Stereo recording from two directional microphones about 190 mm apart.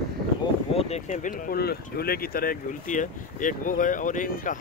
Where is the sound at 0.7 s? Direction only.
35° left (ahead or behind).